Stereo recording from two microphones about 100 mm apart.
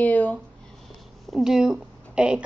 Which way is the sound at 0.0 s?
15° left (ahead or behind).